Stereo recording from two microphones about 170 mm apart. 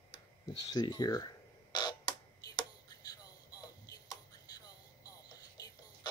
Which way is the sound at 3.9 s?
20° left (ahead or behind).